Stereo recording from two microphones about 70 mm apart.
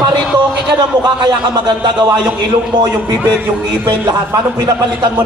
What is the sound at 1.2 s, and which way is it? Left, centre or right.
Speech, right.